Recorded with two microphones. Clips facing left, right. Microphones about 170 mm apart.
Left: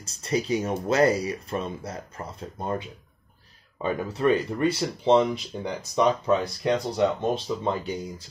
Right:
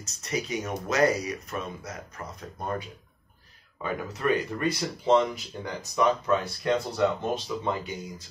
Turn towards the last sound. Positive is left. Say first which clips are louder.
# left 3 dB
turn(degrees=30)  # may be behind; listen again after turning